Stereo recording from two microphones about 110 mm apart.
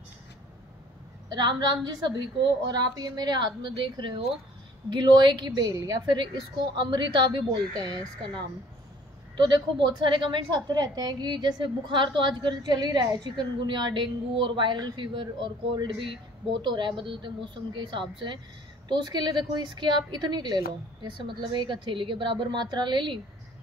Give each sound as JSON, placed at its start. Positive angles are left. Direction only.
{"t": 1.3, "sound": "a woman's voice", "side_deg": -40}
{"t": 9.4, "sound": "a woman's voice", "side_deg": -40}